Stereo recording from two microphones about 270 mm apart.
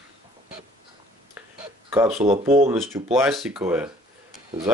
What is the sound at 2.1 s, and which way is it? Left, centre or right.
Speech, right.